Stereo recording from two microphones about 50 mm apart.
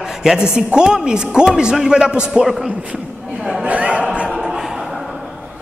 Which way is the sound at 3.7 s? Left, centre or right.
Right.